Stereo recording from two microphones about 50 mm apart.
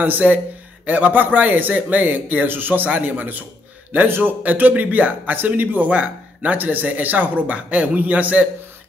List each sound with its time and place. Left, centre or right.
0.0 s a man's voice: right
5.9 s speech: right